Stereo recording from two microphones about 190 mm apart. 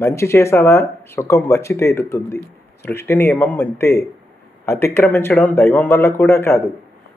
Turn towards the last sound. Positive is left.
turn(degrees=10)  # may be behind; listen again after turning